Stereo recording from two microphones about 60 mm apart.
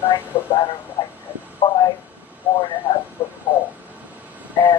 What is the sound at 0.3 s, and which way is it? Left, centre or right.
Speech, left.